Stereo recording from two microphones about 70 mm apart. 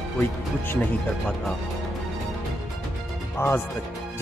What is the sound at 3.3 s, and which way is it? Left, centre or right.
Speech, left.